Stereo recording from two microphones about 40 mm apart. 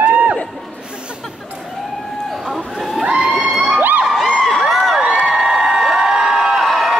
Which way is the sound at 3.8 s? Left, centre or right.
Right.